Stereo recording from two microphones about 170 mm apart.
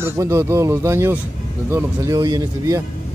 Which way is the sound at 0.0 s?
15° right (ahead or behind).